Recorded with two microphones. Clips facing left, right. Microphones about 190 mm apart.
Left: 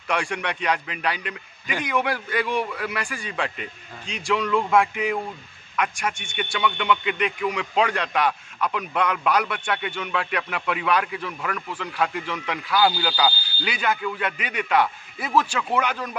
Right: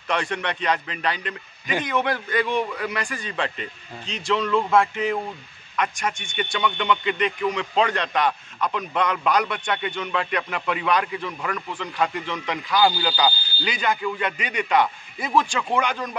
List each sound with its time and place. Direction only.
0.1 s a man's voice: 10° left (ahead or behind)